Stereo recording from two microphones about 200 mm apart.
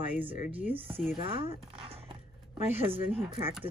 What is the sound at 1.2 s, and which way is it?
Chopping, 25° right (ahead or behind).